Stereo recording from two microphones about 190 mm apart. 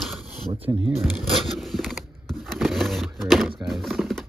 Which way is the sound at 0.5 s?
30° right (ahead or behind).